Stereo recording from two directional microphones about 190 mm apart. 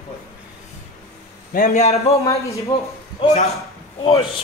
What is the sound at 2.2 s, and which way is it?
Speech, 15° left (ahead or behind).